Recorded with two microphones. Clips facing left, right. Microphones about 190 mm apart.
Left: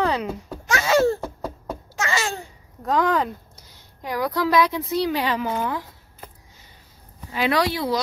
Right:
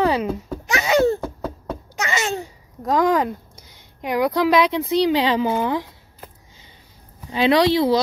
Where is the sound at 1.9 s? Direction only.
20° right (ahead or behind).